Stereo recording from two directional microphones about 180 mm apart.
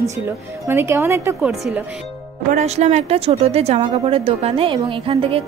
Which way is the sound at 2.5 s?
40° right (ahead or behind).